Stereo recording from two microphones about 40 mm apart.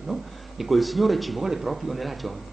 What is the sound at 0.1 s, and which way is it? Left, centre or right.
Speech, centre.